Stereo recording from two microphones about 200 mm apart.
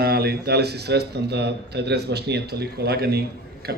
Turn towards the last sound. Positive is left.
turn(degrees=-50)  # may be behind; listen again after turning